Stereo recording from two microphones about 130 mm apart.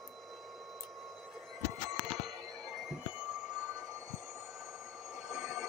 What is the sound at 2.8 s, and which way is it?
Train, 5° right (ahead or behind).